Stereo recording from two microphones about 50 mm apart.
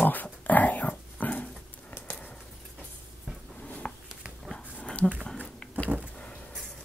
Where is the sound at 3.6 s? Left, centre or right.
Left.